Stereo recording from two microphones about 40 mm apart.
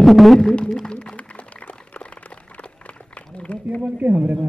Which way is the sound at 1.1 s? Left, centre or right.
Left.